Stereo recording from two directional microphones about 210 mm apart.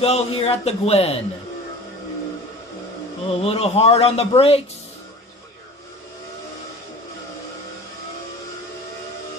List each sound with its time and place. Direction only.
0.0 s speech: 30° left (ahead or behind)
3.3 s speech: 30° left (ahead or behind)